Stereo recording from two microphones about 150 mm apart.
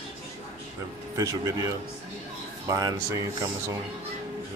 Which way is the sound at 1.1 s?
25° right (ahead or behind).